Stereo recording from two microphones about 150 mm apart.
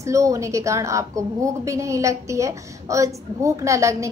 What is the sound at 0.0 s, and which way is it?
A woman's voice, 20° right (ahead or behind).